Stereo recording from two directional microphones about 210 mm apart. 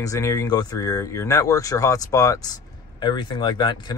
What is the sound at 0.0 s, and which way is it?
Speech, 15° left (ahead or behind).